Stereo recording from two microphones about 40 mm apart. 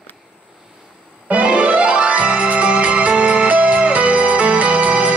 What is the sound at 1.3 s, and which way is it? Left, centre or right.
Music, right.